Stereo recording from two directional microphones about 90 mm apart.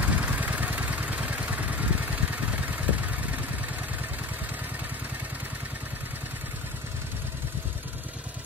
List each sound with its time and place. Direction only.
0.0 s vehicle: 20° right (ahead or behind)